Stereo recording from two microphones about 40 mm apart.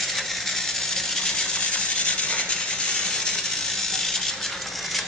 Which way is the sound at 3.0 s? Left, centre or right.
Centre.